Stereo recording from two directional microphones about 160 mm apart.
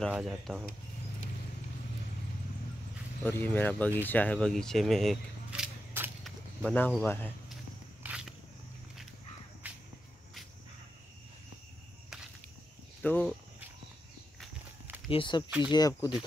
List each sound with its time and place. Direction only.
0.0 s speech: centre (ahead or behind)
3.3 s speech: 10° left (ahead or behind)
8.0 s a sound: 5° right (ahead or behind)
9.6 s cricket: 10° right (ahead or behind)
13.0 s speech: 10° left (ahead or behind)
15.0 s speech: 30° left (ahead or behind)